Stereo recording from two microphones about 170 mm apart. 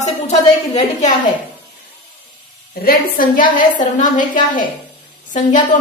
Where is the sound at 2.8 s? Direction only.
55° left (ahead or behind).